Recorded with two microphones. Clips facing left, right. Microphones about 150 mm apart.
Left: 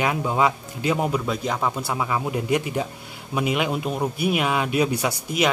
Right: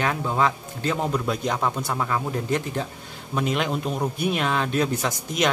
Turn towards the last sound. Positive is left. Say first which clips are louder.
# left 2 dB
turn(degrees=10)  # may be behind; listen again after turning